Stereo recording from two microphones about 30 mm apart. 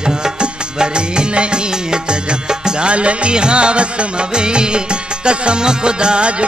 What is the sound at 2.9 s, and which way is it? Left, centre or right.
Music, right.